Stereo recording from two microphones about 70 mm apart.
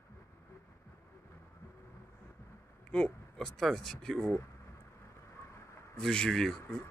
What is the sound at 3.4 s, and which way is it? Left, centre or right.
Speech, centre.